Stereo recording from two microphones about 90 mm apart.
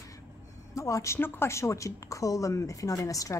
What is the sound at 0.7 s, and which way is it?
A woman's voice, 35° left (ahead or behind).